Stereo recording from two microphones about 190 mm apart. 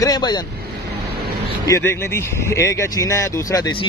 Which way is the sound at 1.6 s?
15° left (ahead or behind).